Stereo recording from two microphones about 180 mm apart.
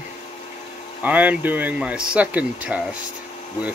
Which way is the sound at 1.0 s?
10° right (ahead or behind).